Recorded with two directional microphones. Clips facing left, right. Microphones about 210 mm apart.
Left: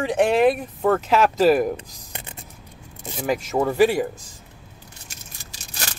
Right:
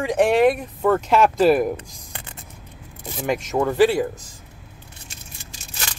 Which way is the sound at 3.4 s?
10° left (ahead or behind).